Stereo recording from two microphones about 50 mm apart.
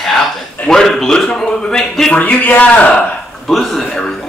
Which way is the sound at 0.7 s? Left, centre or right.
Centre.